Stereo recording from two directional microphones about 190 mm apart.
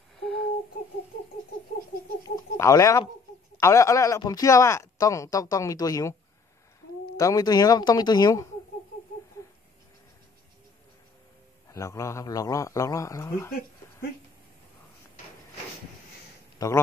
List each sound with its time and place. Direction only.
0.2 s a sound: 5° left (ahead or behind)
2.3 s a sound: 20° left (ahead or behind)
3.5 s speech: 15° left (ahead or behind)
7.2 s speech: 20° left (ahead or behind)
11.7 s speech: 15° left (ahead or behind)
16.5 s speech: 15° left (ahead or behind)